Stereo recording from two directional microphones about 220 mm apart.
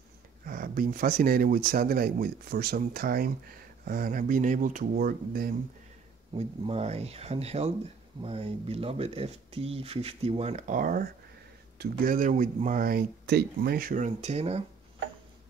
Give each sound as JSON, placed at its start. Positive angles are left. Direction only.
{"t": 0.5, "sound": "speech", "side_deg": -40}
{"t": 6.3, "sound": "speech", "side_deg": -30}